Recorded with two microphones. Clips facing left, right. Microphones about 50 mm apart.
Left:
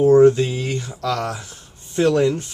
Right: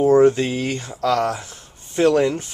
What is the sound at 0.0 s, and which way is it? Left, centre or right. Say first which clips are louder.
Speech: left 2 dB; right.